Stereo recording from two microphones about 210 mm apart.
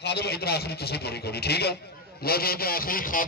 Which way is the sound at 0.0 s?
50° left (ahead or behind).